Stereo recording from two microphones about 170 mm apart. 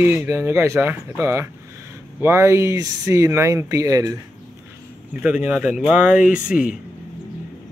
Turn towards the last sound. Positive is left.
turn(degrees=-5)  # may be behind; listen again after turning